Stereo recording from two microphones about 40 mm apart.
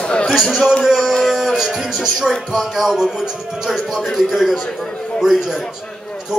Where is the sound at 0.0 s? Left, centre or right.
Left.